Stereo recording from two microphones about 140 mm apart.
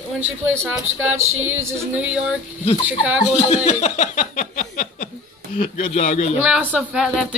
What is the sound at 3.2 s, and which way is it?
Speech, 50° left (ahead or behind).